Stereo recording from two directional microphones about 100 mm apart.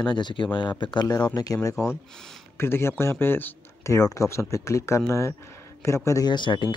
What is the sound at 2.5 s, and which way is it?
Speech, 25° left (ahead or behind).